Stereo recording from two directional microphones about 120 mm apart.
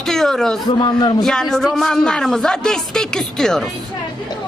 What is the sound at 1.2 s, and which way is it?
A man's voice, 5° left (ahead or behind).